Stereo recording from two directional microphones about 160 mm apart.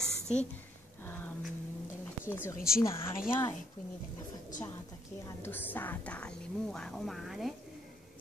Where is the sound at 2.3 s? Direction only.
15° left (ahead or behind).